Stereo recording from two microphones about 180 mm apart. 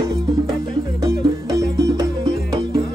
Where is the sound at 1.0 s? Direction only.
20° right (ahead or behind).